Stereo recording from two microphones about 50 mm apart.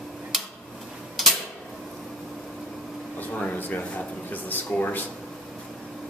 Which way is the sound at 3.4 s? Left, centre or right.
Left.